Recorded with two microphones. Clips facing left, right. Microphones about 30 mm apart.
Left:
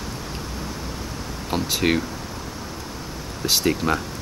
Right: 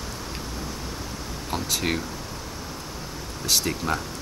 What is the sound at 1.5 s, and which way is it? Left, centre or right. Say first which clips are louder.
Speech: left 5 dB; centre.